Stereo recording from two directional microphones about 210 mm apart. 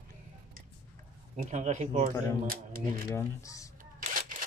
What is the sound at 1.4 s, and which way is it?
Speech, 35° right (ahead or behind).